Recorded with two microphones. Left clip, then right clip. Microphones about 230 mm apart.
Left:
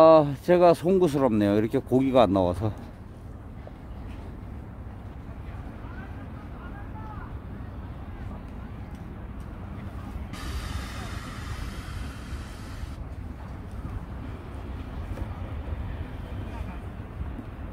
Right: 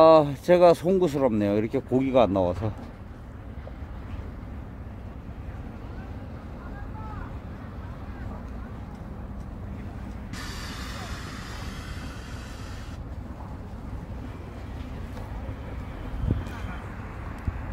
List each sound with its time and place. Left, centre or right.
0.0 s speech: centre
10.3 s music: centre